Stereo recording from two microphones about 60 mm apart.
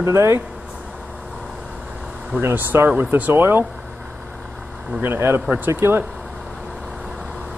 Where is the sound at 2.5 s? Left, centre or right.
Right.